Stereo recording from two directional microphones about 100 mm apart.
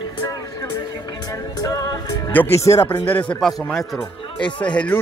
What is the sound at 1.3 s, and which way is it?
Music, 35° left (ahead or behind).